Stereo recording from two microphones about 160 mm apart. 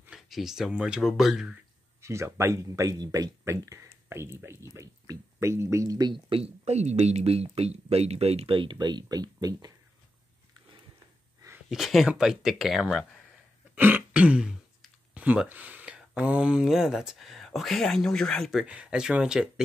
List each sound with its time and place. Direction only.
0.0 s speech: 5° right (ahead or behind)
2.0 s speech: 15° right (ahead or behind)
11.7 s speech: centre (ahead or behind)
13.7 s speech: 10° right (ahead or behind)